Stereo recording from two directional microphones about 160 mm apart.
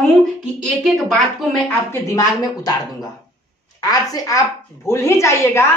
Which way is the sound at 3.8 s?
20° left (ahead or behind).